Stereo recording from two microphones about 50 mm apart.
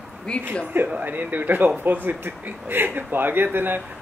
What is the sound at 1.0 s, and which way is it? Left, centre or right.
A man's voice, right.